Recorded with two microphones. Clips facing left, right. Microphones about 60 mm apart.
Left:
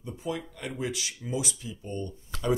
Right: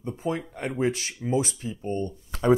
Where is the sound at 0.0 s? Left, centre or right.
Right.